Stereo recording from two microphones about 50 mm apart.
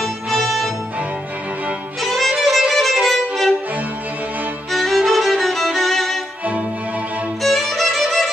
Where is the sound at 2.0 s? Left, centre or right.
Centre.